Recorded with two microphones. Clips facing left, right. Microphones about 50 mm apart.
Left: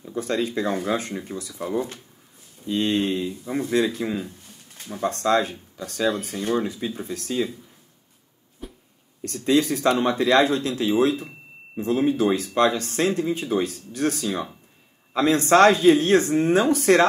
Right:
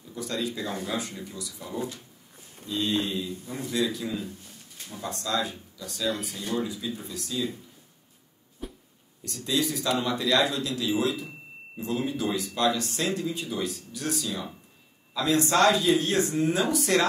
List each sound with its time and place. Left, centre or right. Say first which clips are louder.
0.0 s speech: left 6 dB; left
4.8 s speech: left 11 dB; left
8.6 s a sound: even; centre
9.2 s speech: left 8 dB; left